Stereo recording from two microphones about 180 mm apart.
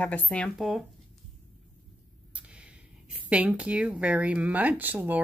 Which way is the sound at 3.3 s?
5° right (ahead or behind).